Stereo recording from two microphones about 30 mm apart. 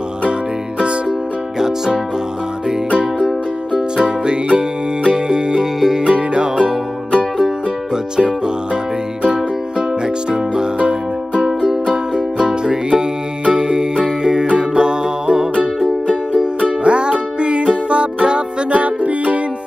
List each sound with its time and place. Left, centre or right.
3.2 s music: centre
3.9 s music: right
6.0 s music: right
9.2 s music: right
10.3 s music: right
10.8 s music: right
11.4 s music: centre
16.6 s music: right
18.7 s music: right